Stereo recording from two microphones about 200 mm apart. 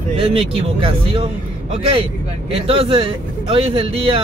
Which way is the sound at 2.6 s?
25° right (ahead or behind).